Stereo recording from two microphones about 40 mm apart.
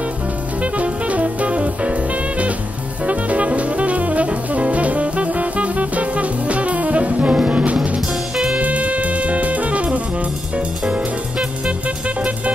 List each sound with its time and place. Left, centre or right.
0.7 s music: right
3.1 s music: right